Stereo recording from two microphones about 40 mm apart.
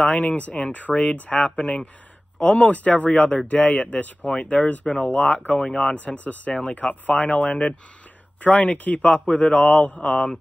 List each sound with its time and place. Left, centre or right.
0.0 s speech: left
3.9 s speech: left